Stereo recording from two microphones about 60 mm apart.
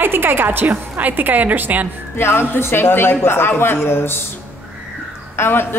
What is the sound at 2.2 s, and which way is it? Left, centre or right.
A woman's voice, left.